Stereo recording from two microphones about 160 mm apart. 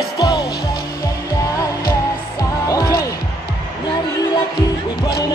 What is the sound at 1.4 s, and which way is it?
Music, 20° left (ahead or behind).